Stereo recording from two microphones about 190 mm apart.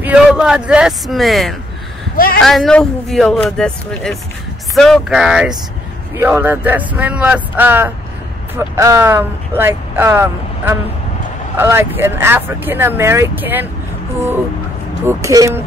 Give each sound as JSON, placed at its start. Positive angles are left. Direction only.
{"t": 0.0, "sound": "speech", "side_deg": -5}
{"t": 15.0, "sound": "speech", "side_deg": -15}